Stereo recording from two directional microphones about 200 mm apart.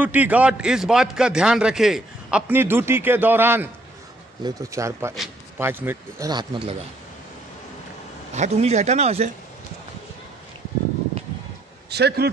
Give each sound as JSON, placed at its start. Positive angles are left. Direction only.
{"t": 0.0, "sound": "a man's voice", "side_deg": -10}
{"t": 8.4, "sound": "speech", "side_deg": -35}
{"t": 11.9, "sound": "speech", "side_deg": -55}